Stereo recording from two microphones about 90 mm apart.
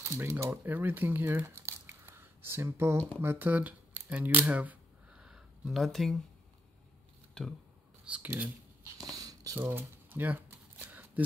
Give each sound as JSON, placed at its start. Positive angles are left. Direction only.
{"t": 0.0, "sound": "speech", "side_deg": -30}
{"t": 1.7, "sound": "a sound", "side_deg": -30}
{"t": 3.2, "sound": "speech", "side_deg": -20}
{"t": 7.4, "sound": "speech", "side_deg": 10}
{"t": 8.0, "sound": "speech", "side_deg": -15}
{"t": 9.1, "sound": "a sound", "side_deg": -40}
{"t": 9.6, "sound": "shuffling cards", "side_deg": -25}